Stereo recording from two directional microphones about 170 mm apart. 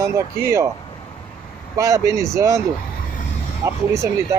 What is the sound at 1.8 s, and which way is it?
Speech, 20° right (ahead or behind).